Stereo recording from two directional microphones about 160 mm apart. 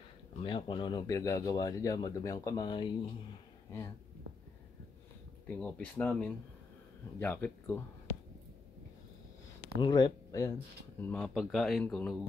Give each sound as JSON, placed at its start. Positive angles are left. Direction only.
{"t": 0.4, "sound": "speech", "side_deg": 30}
{"t": 5.6, "sound": "speech", "side_deg": 10}
{"t": 9.8, "sound": "speech", "side_deg": 30}
{"t": 11.0, "sound": "speech", "side_deg": 10}